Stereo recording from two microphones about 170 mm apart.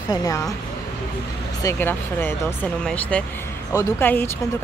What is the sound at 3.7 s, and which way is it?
Speech, 20° left (ahead or behind).